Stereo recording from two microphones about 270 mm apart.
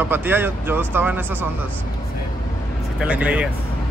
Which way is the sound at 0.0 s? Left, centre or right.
Centre.